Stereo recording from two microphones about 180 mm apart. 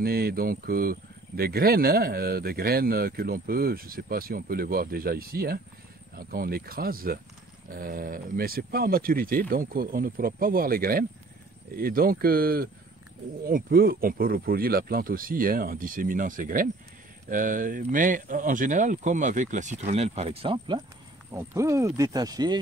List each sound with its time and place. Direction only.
0.0 s speech: 60° right (ahead or behind); by 22.6 s 20° right (ahead or behind)